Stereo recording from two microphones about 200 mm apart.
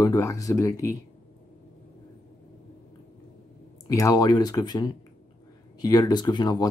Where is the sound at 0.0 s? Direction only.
15° left (ahead or behind).